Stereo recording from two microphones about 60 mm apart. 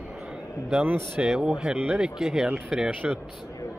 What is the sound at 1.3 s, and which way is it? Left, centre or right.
Speech, centre.